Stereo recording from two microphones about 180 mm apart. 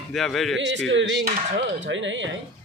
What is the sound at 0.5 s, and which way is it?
A man's voice, 85° right.